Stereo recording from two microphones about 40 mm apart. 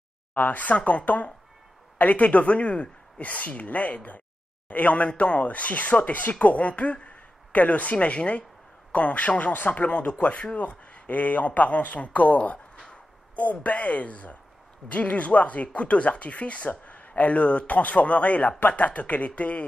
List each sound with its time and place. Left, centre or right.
0.3 s a woman's voice: left